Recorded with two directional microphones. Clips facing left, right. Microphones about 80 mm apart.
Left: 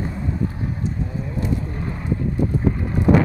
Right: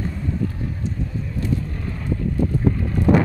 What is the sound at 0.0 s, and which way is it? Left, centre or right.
Vehicle, centre.